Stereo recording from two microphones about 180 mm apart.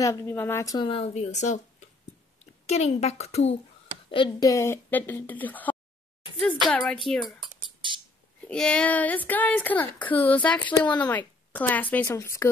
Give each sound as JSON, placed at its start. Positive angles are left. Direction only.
{"t": 0.0, "sound": "a woman's voice", "side_deg": 15}
{"t": 0.8, "sound": "speech", "side_deg": 35}
{"t": 4.1, "sound": "a woman's voice", "side_deg": 25}
{"t": 7.3, "sound": "a sound", "side_deg": -25}
{"t": 8.5, "sound": "a woman's voice", "side_deg": 5}